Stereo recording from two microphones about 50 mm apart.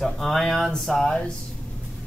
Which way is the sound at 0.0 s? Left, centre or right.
Centre.